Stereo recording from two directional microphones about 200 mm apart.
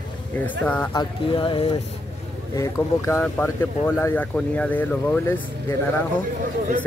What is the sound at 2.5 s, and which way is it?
Speech, 15° left (ahead or behind).